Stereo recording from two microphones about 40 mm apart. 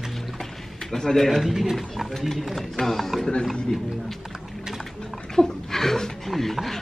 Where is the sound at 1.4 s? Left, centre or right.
Centre.